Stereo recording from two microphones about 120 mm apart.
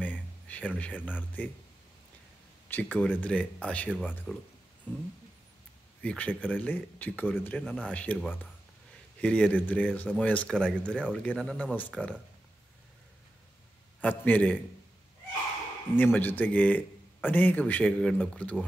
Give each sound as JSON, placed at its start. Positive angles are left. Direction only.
{"t": 0.0, "sound": "speech", "side_deg": 10}
{"t": 2.7, "sound": "speech", "side_deg": 10}
{"t": 6.0, "sound": "speech", "side_deg": 10}
{"t": 14.0, "sound": "speech", "side_deg": 15}
{"t": 16.0, "sound": "speech", "side_deg": 15}